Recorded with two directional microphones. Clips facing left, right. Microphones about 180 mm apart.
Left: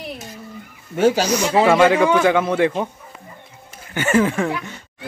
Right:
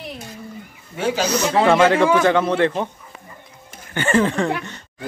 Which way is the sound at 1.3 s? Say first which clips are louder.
Left 1 dB; 10° left (ahead or behind).